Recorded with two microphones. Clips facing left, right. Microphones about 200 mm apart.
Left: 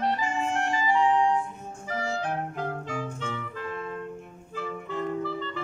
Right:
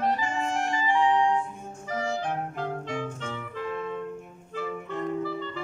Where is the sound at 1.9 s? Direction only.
5° left (ahead or behind).